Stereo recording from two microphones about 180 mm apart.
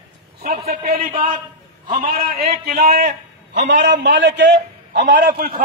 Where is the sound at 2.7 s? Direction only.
40° right (ahead or behind).